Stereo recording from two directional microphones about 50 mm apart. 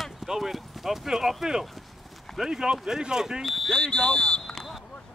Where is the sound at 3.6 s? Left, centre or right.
Centre.